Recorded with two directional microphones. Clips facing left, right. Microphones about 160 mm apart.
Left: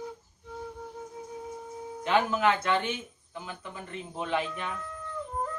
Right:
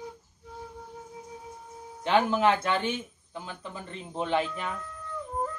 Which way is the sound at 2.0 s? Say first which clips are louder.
Right 2 dB; 30° right (ahead or behind).